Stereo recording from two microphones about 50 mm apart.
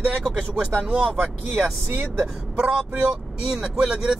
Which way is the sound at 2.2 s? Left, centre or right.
Right.